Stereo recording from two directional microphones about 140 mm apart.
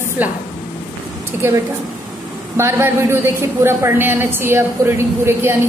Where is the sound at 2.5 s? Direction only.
15° right (ahead or behind).